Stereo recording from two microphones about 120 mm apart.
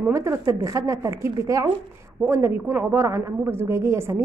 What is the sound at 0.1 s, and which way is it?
A woman's voice, 25° right (ahead or behind).